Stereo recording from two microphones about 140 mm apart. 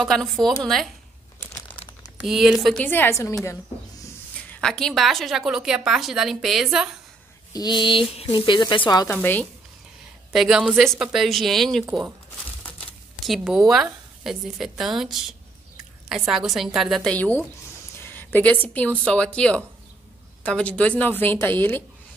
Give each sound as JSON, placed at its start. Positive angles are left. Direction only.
{"t": 0.0, "sound": "a woman's voice", "side_deg": 0}
{"t": 2.2, "sound": "a woman's voice", "side_deg": -5}
{"t": 2.8, "sound": "a woman's voice", "side_deg": 15}
{"t": 4.5, "sound": "a woman's voice", "side_deg": 5}
{"t": 7.5, "sound": "speech", "side_deg": 30}
{"t": 9.0, "sound": "a woman's voice", "side_deg": 15}
{"t": 10.3, "sound": "a woman's voice", "side_deg": -5}
{"t": 13.2, "sound": "a woman's voice", "side_deg": 0}